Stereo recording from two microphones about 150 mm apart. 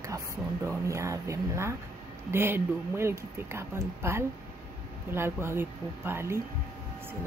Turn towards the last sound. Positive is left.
turn(degrees=-15)  # may be behind; listen again after turning